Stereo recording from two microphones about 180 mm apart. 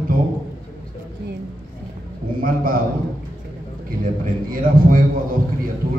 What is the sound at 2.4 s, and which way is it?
Speech, 55° right (ahead or behind).